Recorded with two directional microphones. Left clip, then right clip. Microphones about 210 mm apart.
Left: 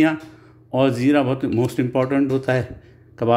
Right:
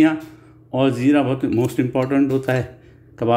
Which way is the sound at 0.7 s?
10° left (ahead or behind).